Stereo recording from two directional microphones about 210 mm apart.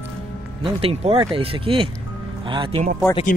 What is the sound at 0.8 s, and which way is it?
Speech, 25° right (ahead or behind).